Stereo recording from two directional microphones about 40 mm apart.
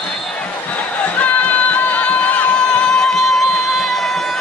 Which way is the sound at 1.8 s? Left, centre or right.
Left.